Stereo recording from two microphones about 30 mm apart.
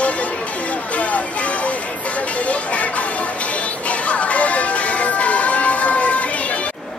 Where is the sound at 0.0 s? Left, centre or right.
Left.